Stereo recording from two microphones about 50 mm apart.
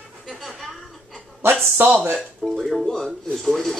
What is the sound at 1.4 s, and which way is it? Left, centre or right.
Speech, right.